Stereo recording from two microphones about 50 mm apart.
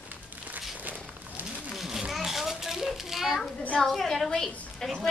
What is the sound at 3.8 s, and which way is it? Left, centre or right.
A woman's voice, centre.